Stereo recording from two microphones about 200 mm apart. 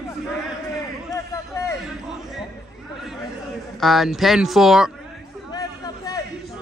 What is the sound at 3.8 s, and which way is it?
Speech, centre (ahead or behind).